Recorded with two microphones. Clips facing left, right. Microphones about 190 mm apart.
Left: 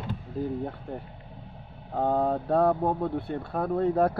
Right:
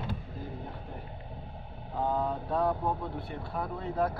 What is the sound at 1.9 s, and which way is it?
Speech, 60° left (ahead or behind).